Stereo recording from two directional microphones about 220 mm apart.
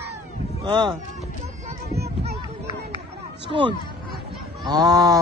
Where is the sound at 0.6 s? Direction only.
20° right (ahead or behind).